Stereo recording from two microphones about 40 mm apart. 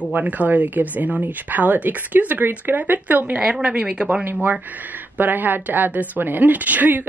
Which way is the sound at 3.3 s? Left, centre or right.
Right.